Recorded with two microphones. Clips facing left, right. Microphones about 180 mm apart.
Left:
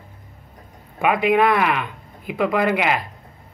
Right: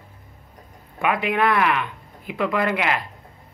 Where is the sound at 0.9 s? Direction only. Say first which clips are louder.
Left 5 dB; 15° left (ahead or behind).